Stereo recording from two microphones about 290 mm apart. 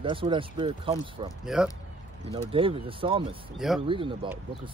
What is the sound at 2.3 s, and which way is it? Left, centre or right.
Speech, centre.